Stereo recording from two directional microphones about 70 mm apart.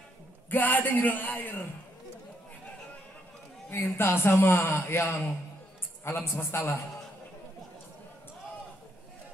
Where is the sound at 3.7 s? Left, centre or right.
Left.